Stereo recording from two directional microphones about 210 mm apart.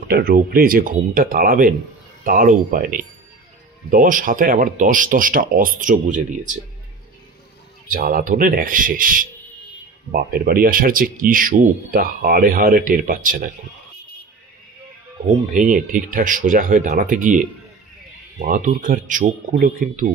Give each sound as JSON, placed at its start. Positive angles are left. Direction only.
{"t": 0.1, "sound": "speech", "side_deg": -45}
{"t": 7.9, "sound": "speech", "side_deg": -40}
{"t": 15.5, "sound": "speech", "side_deg": -40}